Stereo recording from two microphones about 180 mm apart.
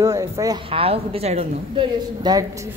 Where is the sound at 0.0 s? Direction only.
15° right (ahead or behind).